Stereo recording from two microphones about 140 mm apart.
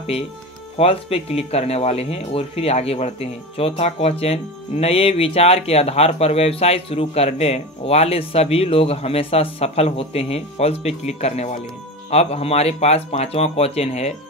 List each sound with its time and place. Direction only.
0.7 s speech: 45° left (ahead or behind)